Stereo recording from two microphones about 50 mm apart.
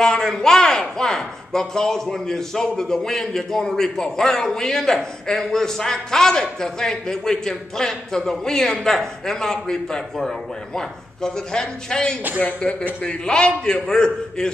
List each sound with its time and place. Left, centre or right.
0.0 s speech: centre